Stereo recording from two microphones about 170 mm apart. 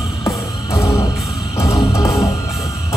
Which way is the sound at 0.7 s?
20° left (ahead or behind).